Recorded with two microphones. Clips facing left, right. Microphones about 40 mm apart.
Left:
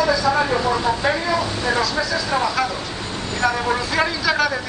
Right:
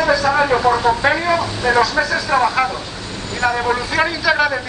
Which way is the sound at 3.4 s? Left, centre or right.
Centre.